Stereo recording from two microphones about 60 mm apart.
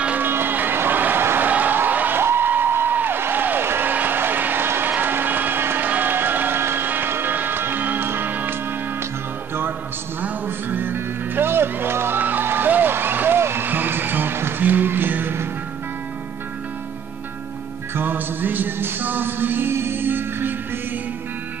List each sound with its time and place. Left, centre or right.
0.2 s music: right
1.5 s a sound: right
5.9 s music: right
10.2 s music: right
17.9 s music: right